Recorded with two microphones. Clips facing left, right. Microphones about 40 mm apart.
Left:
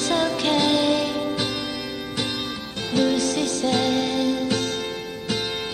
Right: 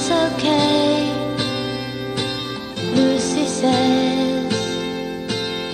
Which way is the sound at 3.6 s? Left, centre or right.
Right.